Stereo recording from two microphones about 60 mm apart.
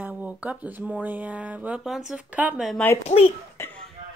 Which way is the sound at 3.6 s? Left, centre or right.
Left.